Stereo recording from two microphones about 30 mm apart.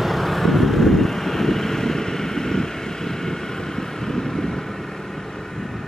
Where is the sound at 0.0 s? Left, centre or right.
Centre.